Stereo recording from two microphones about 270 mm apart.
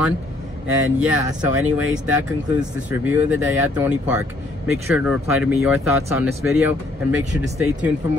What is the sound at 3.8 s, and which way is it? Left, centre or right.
Speech, centre.